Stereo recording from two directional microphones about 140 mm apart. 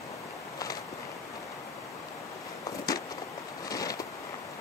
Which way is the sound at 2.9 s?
25° left (ahead or behind).